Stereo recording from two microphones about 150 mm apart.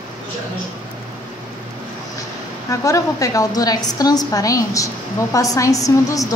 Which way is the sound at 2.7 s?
20° left (ahead or behind).